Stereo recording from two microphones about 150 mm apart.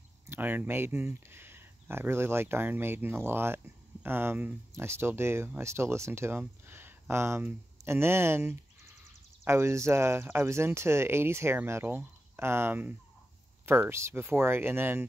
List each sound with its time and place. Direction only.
0.3 s speech: 15° right (ahead or behind)